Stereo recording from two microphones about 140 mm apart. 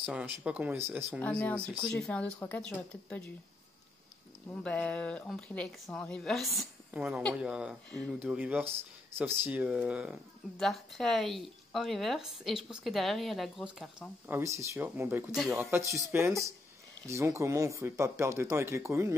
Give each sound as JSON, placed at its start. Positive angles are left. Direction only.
{"t": 0.0, "sound": "speech", "side_deg": -5}
{"t": 1.2, "sound": "speech", "side_deg": 10}
{"t": 4.5, "sound": "speech", "side_deg": 10}
{"t": 14.2, "sound": "speech", "side_deg": -20}